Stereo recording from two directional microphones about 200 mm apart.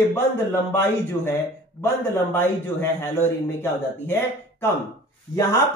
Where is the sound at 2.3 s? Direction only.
10° left (ahead or behind).